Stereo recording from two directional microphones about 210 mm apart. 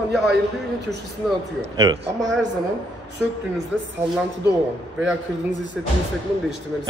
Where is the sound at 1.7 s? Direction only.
20° right (ahead or behind).